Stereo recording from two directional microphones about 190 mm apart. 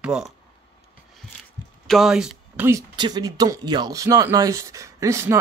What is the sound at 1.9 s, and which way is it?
Speech, centre (ahead or behind).